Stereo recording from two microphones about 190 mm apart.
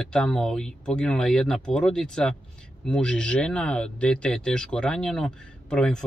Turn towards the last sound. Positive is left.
turn(degrees=5)  # may be behind; listen again after turning